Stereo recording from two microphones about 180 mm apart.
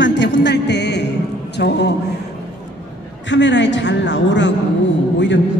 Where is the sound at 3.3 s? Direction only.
85° left.